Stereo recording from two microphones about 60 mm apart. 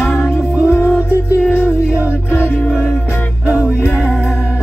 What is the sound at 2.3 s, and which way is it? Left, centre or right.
Music, left.